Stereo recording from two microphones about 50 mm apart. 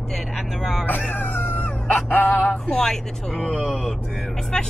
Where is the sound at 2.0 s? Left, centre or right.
Left.